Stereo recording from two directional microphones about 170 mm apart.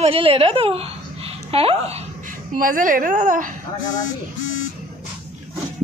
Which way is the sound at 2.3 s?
55° right (ahead or behind).